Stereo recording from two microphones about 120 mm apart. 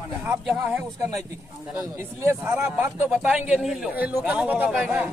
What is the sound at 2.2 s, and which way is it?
A man's voice, 20° right (ahead or behind).